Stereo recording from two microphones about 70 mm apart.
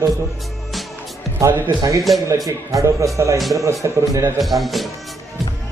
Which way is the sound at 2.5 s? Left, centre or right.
Right.